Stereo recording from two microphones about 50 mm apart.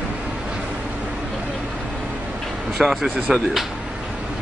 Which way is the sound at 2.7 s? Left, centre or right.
Centre.